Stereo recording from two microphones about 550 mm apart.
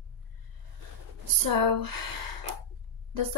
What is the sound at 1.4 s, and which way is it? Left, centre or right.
Speech, right.